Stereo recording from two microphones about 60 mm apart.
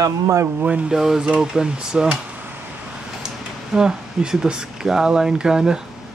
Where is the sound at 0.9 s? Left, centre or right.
Centre.